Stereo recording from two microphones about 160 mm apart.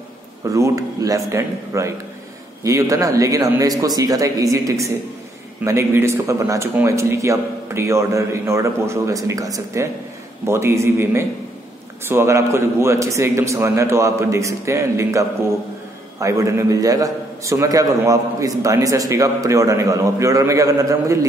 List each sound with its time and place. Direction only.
0.5 s a man's voice: 20° right (ahead or behind)